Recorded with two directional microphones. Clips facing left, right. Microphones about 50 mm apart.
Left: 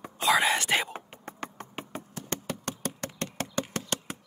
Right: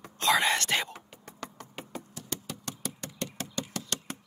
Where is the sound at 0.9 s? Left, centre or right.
Left.